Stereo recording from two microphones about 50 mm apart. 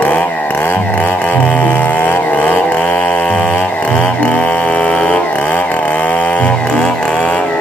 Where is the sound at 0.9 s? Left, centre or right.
Left.